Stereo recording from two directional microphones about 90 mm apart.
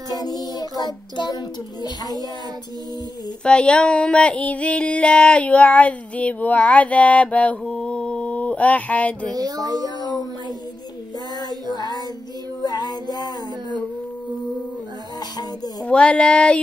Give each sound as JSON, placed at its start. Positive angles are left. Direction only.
{"t": 0.1, "sound": "child singing", "side_deg": 45}
{"t": 3.4, "sound": "female singing", "side_deg": 10}
{"t": 9.3, "sound": "speech", "side_deg": -45}
{"t": 9.8, "sound": "a sound", "side_deg": 45}
{"t": 11.7, "sound": "child singing", "side_deg": 50}
{"t": 12.6, "sound": "a sound", "side_deg": 50}
{"t": 15.8, "sound": "female singing", "side_deg": 15}